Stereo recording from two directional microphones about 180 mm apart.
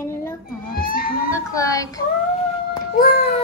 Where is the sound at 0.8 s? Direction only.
55° left (ahead or behind).